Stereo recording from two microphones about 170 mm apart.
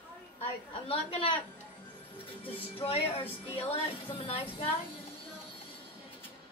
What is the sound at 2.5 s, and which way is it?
Music, 35° left (ahead or behind).